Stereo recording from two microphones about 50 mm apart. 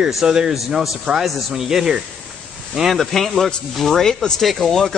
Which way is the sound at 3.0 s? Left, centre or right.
Centre.